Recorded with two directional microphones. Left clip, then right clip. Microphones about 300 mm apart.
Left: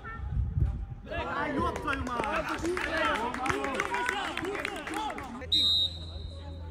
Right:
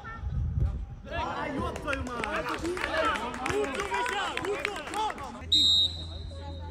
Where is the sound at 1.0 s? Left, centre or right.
Centre.